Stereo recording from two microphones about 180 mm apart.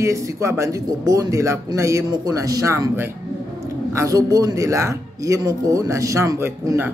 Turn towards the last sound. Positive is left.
turn(degrees=-15)  # may be behind; listen again after turning